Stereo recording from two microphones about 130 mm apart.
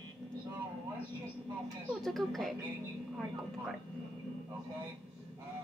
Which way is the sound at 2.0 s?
Centre (ahead or behind).